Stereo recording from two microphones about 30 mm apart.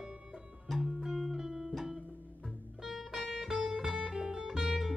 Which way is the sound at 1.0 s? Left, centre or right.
Centre.